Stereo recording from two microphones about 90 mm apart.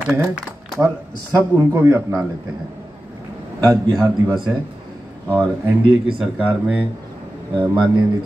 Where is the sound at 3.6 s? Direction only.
40° right (ahead or behind).